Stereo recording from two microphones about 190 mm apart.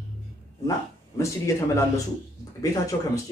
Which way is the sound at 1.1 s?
15° left (ahead or behind).